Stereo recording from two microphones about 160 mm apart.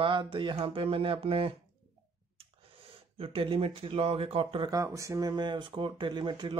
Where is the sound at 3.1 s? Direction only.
35° right (ahead or behind).